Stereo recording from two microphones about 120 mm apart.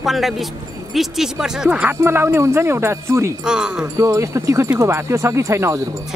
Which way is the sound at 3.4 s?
5° right (ahead or behind).